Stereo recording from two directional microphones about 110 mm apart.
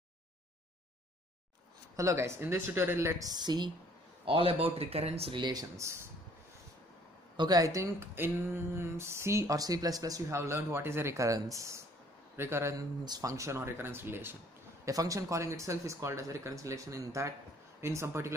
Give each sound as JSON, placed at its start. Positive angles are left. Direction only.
{"t": 2.0, "sound": "speech", "side_deg": -25}
{"t": 4.3, "sound": "speech", "side_deg": -55}
{"t": 5.3, "sound": "speech", "side_deg": -40}
{"t": 7.3, "sound": "speech", "side_deg": -40}
{"t": 13.0, "sound": "speech", "side_deg": -35}
{"t": 14.9, "sound": "speech", "side_deg": -30}